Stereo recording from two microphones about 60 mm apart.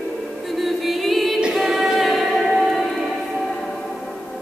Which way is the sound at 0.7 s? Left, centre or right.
Centre.